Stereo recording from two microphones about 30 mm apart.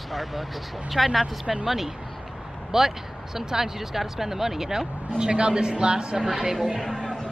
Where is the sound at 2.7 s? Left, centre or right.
Centre.